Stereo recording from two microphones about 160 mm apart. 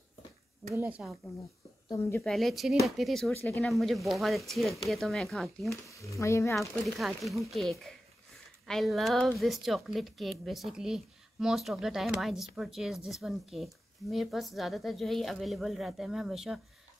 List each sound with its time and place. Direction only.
0.7 s speech: 10° right (ahead or behind)
1.9 s speech: 15° left (ahead or behind)
2.2 s speech: centre (ahead or behind)
5.7 s speech: 20° left (ahead or behind)
7.0 s speech: centre (ahead or behind)